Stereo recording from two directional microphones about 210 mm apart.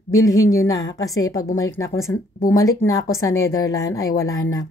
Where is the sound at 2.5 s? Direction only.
15° left (ahead or behind).